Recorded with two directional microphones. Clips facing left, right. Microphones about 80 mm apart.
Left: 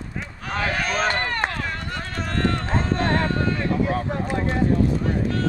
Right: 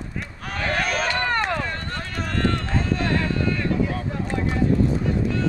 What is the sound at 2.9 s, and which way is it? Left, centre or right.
Clip-clop, left.